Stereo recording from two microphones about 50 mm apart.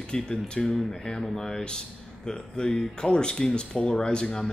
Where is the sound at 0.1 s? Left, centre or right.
Centre.